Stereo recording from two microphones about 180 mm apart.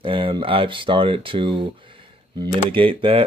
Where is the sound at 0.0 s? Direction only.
30° right (ahead or behind).